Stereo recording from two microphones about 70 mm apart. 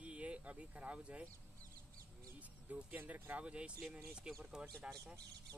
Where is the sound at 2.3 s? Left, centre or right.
Right.